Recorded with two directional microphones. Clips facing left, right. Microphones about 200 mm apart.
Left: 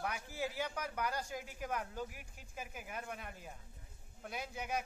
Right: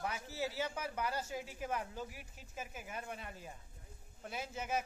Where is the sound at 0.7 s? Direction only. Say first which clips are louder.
Even; 5° right (ahead or behind).